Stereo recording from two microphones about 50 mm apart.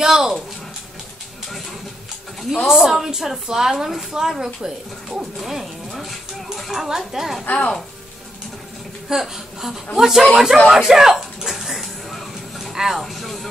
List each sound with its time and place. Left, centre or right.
0.0 s speech: centre
2.5 s a woman's voice: centre
7.4 s speech: left
9.1 s a woman's voice: centre
10.7 s a sound: centre
12.7 s speech: centre